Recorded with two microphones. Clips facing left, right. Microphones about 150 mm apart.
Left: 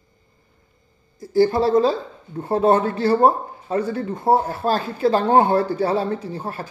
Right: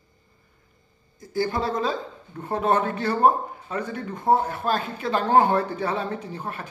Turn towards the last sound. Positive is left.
turn(degrees=35)  # may be behind; listen again after turning